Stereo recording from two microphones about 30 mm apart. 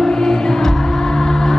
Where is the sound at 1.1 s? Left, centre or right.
Centre.